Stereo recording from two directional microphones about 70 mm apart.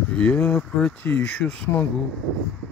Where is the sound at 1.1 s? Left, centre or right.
Left.